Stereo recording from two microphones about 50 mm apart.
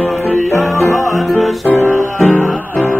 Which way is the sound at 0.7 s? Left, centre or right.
Left.